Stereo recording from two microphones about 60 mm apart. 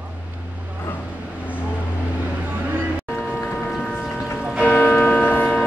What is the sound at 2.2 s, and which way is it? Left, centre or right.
Vehicle, right.